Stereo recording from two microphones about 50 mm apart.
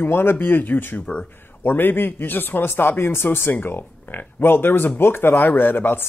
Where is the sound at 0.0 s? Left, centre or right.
Left.